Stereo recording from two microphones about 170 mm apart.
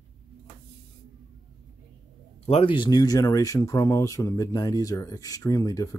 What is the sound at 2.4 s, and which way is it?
Speech, 35° left (ahead or behind).